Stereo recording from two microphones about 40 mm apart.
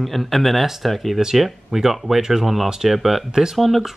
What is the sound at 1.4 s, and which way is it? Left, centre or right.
Speech, centre.